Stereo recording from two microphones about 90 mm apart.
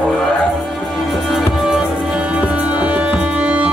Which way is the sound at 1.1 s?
Centre (ahead or behind).